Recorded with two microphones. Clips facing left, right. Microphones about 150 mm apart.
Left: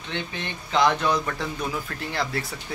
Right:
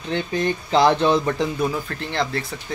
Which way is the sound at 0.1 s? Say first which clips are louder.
Right 10 dB; 40° right (ahead or behind).